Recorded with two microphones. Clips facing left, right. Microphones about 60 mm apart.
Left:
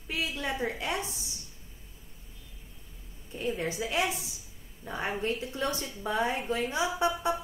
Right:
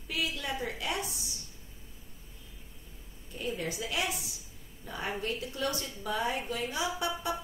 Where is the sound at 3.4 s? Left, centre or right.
Left.